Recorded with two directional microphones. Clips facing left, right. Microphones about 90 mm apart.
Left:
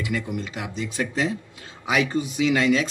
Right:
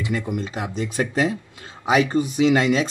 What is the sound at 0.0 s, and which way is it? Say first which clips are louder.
A man's voice: right 2 dB; 35° right (ahead or behind).